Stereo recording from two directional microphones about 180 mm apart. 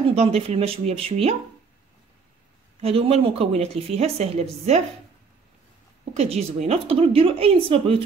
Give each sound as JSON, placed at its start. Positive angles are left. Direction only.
{"t": 0.1, "sound": "a woman's voice", "side_deg": -35}
{"t": 2.8, "sound": "a woman's voice", "side_deg": -35}
{"t": 6.1, "sound": "a woman's voice", "side_deg": -35}